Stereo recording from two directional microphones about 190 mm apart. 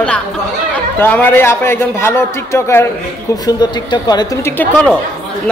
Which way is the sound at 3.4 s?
25° left (ahead or behind).